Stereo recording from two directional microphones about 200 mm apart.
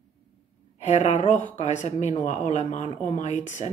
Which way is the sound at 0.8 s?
35° left (ahead or behind).